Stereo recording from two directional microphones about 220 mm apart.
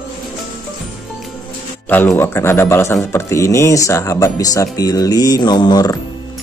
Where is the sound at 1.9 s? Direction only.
10° left (ahead or behind).